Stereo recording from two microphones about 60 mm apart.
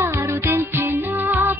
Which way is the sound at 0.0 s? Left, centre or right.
Right.